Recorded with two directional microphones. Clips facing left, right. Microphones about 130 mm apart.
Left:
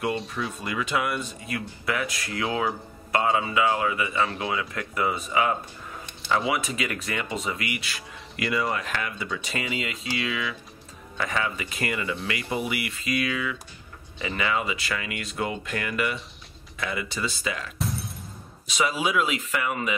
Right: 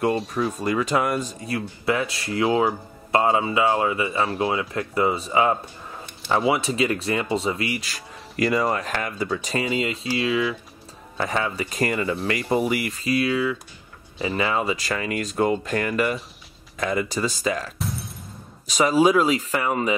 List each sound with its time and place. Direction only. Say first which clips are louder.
0.3 s speech: right 7 dB; 40° right (ahead or behind)